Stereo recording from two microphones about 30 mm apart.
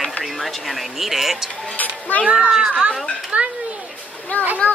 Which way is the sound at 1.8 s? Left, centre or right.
Left.